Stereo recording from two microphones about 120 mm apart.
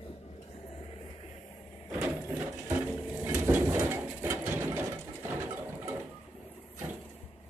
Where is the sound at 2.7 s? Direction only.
15° right (ahead or behind).